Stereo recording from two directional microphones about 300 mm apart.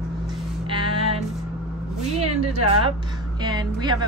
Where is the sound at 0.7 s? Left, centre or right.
Centre.